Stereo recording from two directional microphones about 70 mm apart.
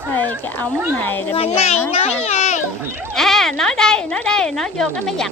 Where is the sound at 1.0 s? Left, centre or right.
Left.